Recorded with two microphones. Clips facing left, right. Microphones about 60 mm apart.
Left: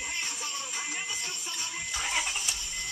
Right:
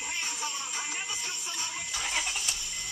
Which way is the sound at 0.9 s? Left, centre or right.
Left.